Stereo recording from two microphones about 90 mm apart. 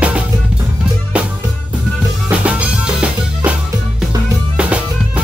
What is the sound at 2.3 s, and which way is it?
Drum, 15° right (ahead or behind).